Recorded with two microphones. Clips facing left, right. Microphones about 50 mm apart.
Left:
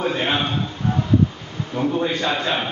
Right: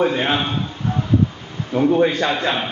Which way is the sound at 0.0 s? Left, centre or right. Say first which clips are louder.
Right 3 dB; centre.